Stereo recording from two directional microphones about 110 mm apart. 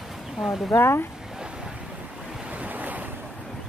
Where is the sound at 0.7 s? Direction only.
20° left (ahead or behind).